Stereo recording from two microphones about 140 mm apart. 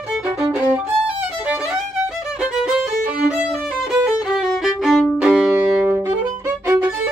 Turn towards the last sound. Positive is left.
turn(degrees=-10)  # may be behind; listen again after turning